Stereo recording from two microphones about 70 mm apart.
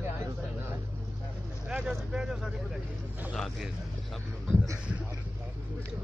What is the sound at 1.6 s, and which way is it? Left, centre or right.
Speech, centre.